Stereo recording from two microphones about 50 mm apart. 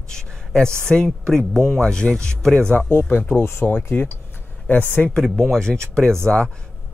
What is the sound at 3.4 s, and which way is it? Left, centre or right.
Speech, left.